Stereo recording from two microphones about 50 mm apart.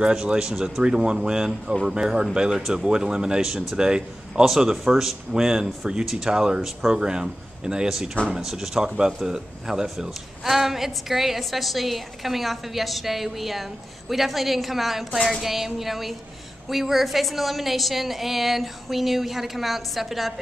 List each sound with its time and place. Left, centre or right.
0.0 s speech: centre